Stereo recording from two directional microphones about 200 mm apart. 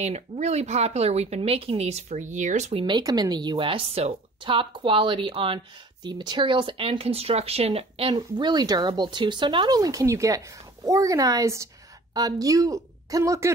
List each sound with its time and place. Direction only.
0.0 s speech: 35° right (ahead or behind)
2.8 s a woman's voice: 20° right (ahead or behind)